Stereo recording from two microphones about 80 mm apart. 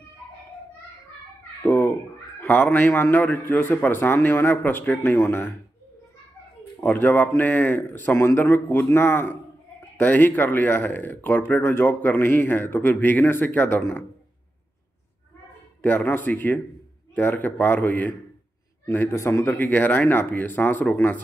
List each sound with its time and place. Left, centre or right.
1.6 s cat: left
2.4 s speech: left
6.8 s speech: left
15.8 s speech: left
19.1 s a man's voice: left
19.4 s speech: left